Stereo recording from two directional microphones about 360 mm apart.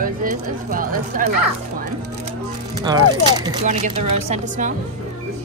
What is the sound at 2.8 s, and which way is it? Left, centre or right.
Speech, centre.